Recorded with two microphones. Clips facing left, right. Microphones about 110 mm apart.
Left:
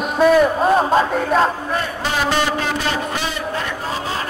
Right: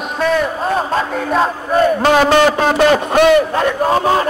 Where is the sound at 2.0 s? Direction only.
60° right (ahead or behind).